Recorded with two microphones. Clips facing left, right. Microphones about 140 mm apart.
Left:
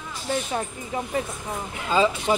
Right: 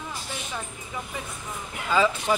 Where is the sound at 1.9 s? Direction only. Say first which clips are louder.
Left 2 dB; 25° left (ahead or behind).